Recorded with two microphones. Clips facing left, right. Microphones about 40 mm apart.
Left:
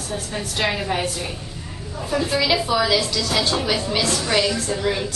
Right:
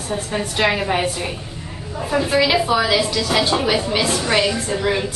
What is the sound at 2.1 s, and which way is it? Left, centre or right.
A woman's voice, centre.